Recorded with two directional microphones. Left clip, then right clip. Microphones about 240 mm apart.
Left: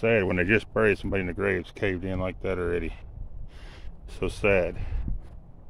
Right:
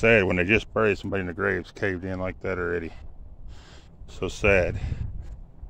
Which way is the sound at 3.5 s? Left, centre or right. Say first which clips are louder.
Left 1 dB; centre.